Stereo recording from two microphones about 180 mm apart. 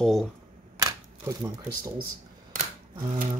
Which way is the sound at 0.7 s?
20° right (ahead or behind).